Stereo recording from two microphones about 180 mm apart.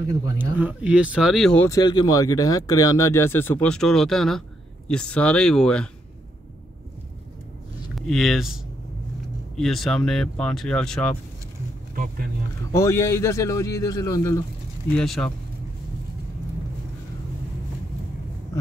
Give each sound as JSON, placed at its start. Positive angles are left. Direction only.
{"t": 0.4, "sound": "speech", "side_deg": -10}
{"t": 1.7, "sound": "speech", "side_deg": 20}
{"t": 7.9, "sound": "speech", "side_deg": 0}
{"t": 9.6, "sound": "speech", "side_deg": 0}
{"t": 11.9, "sound": "speech", "side_deg": -55}
{"t": 12.7, "sound": "speech", "side_deg": 15}
{"t": 14.9, "sound": "speech", "side_deg": 0}